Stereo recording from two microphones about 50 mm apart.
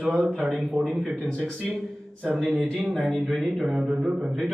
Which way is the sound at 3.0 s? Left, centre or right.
Centre.